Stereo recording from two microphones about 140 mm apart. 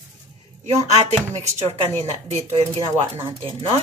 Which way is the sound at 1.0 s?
55° right (ahead or behind).